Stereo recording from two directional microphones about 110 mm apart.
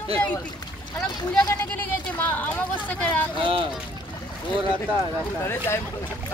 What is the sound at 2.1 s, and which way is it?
Speech, 15° left (ahead or behind).